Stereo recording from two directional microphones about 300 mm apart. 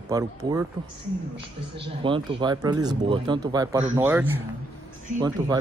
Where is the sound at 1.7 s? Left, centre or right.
Centre.